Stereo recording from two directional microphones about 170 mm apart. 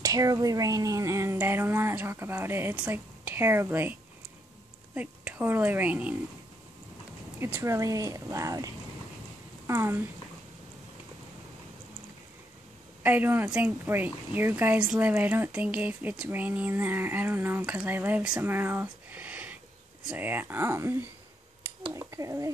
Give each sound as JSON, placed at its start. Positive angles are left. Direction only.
{"t": 0.0, "sound": "speech", "side_deg": -20}
{"t": 4.9, "sound": "a woman's voice", "side_deg": -10}
{"t": 7.3, "sound": "speech", "side_deg": -15}
{"t": 9.7, "sound": "speech", "side_deg": -15}
{"t": 13.0, "sound": "speech", "side_deg": -10}